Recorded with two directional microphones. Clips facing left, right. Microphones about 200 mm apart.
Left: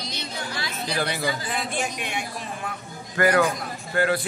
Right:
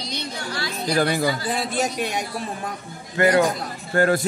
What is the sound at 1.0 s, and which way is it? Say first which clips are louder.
A man's voice: right 5 dB; 45° right (ahead or behind).